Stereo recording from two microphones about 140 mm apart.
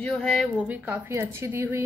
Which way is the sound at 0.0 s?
5° left (ahead or behind).